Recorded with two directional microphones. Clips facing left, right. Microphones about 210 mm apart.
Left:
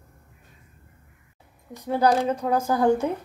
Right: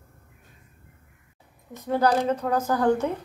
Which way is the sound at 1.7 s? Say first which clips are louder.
Left 1 dB; 10° left (ahead or behind).